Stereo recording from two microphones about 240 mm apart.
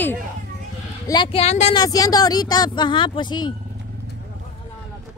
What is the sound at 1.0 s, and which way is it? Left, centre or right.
Speech, centre.